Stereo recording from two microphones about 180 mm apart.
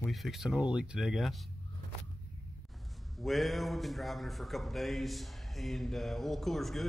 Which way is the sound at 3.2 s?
Centre (ahead or behind).